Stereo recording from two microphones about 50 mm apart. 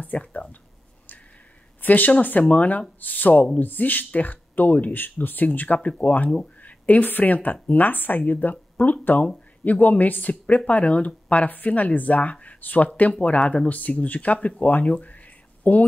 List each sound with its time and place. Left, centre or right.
0.0 s speech: left
1.8 s speech: left
5.8 s speech: left
6.0 s speech: left